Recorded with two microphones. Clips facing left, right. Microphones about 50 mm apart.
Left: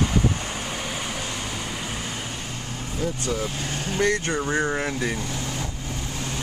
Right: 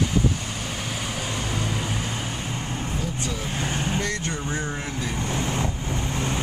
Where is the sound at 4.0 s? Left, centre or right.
Left.